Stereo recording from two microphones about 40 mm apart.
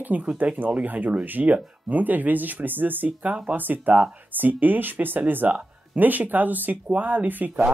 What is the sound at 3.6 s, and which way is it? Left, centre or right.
A woman's voice, right.